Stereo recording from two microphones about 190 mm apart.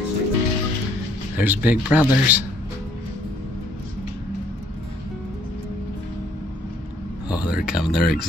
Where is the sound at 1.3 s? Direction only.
10° right (ahead or behind).